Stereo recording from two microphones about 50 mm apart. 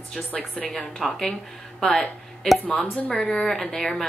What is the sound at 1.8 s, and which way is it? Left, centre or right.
Speech, centre.